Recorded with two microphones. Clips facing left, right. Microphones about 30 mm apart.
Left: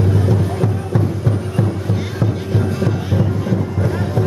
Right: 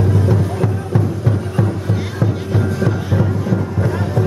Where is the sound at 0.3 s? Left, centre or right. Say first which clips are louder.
Even; centre.